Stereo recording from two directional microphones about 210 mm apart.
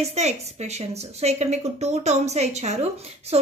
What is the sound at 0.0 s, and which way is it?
Speech, 30° right (ahead or behind).